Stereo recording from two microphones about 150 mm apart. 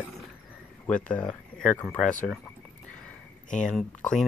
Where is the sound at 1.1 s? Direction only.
5° left (ahead or behind).